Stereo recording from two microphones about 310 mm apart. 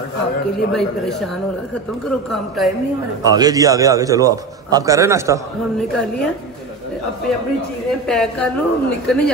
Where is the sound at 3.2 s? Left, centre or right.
Centre.